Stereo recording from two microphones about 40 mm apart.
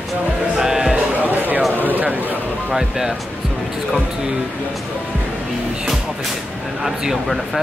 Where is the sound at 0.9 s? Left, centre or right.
Right.